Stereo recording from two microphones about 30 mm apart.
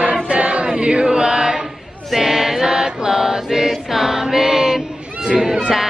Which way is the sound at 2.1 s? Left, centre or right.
Centre.